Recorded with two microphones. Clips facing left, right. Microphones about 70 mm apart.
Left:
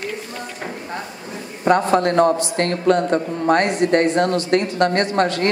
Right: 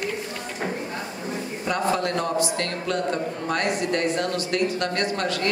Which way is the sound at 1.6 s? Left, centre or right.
Left.